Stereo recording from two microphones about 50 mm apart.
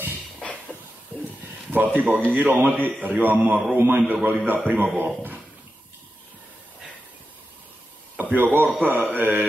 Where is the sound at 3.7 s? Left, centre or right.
Right.